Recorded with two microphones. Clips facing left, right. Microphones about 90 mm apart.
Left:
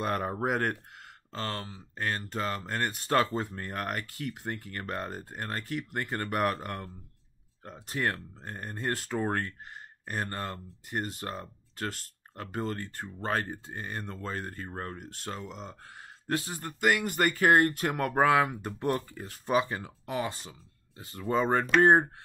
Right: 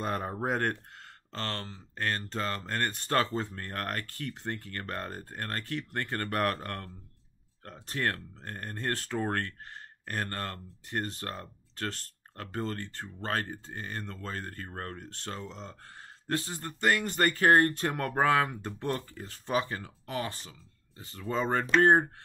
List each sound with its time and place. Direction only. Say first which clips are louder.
0.0 s speech: left 2 dB; centre (ahead or behind); by 22.1 s 20° left (ahead or behind)